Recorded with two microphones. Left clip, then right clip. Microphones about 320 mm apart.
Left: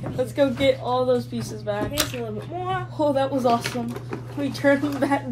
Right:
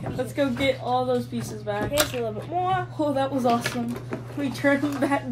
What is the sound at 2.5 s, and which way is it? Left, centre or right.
Speech, right.